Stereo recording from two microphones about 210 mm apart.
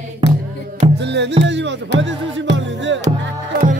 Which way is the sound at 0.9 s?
55° right (ahead or behind).